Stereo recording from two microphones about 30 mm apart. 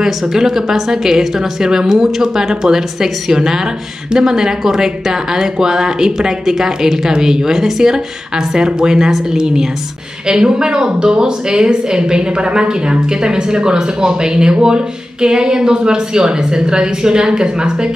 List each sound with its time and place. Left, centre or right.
0.0 s a woman's voice: centre